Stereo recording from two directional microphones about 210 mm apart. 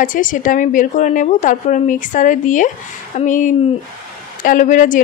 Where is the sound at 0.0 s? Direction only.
40° left (ahead or behind).